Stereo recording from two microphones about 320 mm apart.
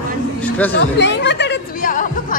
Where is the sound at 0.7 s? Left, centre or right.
Left.